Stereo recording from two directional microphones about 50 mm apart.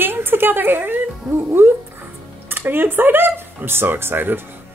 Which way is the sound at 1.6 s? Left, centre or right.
Right.